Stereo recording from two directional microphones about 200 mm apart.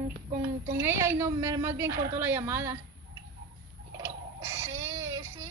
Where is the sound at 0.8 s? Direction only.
10° right (ahead or behind).